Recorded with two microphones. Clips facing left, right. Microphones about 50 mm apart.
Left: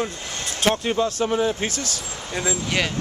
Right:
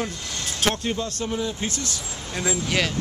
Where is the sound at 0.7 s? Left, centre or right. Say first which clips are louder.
Left 6 dB; centre.